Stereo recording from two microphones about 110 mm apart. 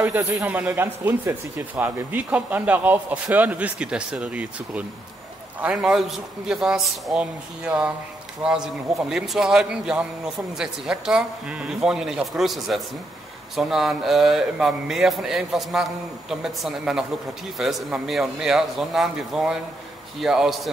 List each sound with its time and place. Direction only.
0.0 s a man's voice: 15° right (ahead or behind); by 20.7 s centre (ahead or behind)